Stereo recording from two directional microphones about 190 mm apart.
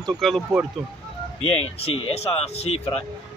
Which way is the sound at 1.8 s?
35° left (ahead or behind).